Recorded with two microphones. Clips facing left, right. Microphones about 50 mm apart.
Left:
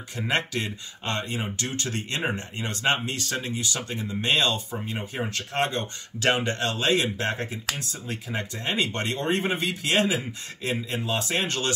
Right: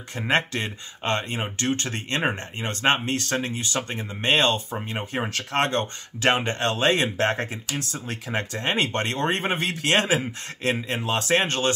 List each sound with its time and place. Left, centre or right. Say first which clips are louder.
0.1 s speech: right 3 dB; right
5.3 s a man's voice: right 3 dB; right
6.2 s a man's voice: right 2 dB; right
11.4 s speech: right 4 dB; right